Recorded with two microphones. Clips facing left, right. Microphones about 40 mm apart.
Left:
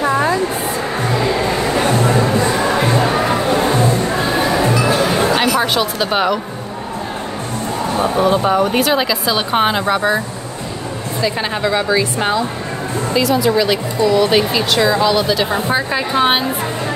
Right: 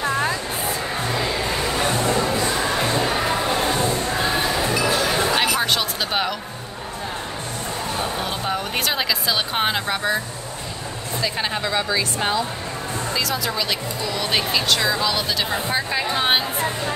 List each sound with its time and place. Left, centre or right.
0.0 s music: centre
5.3 s speech: centre
8.5 s speech: centre
11.2 s a woman's voice: centre